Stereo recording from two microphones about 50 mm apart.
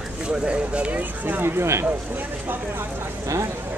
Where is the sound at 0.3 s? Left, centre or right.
Right.